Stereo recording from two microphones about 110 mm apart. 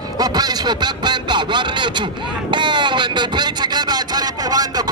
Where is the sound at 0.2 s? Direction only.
40° right (ahead or behind).